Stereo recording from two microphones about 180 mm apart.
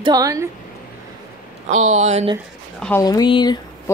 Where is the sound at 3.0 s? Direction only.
20° left (ahead or behind).